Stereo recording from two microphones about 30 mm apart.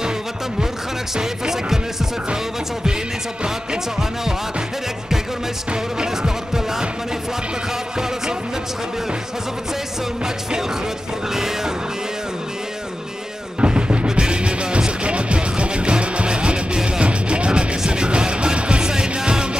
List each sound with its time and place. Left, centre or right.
1.1 s speech: centre
3.4 s music: right
5.7 s music: right
11.3 s speech: centre
13.6 s music: right
16.7 s music: right
17.0 s music: right
17.5 s music: right